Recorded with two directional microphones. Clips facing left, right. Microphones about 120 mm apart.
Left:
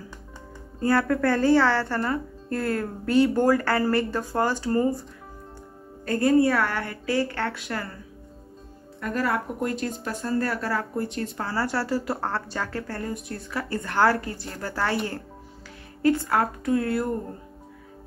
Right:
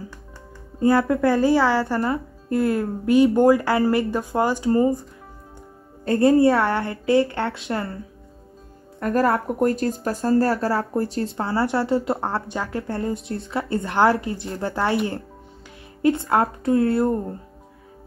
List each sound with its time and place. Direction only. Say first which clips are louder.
0.7 s speech: right 4 dB; 15° right (ahead or behind)
6.0 s speech: right 4 dB; 25° right (ahead or behind)
9.0 s speech: right 6 dB; 50° right (ahead or behind); by 15.0 s 20° right (ahead or behind)
16.0 s speech: right 3 dB; 20° right (ahead or behind)